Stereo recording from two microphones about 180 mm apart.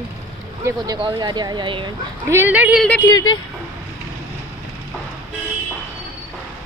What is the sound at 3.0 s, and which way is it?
Speech, 20° left (ahead or behind).